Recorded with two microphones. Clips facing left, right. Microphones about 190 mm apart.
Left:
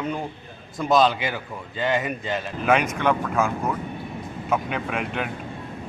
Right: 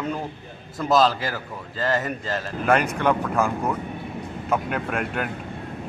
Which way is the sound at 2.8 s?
10° right (ahead or behind).